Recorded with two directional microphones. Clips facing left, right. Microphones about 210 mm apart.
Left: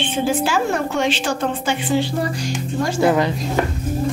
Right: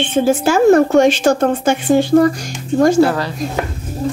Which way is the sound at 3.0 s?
20° left (ahead or behind).